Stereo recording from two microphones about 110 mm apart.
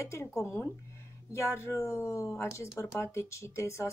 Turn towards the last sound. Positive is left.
turn(degrees=25)  # may be behind; listen again after turning